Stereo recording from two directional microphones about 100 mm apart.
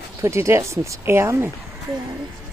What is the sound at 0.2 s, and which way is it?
Speech, 30° right (ahead or behind).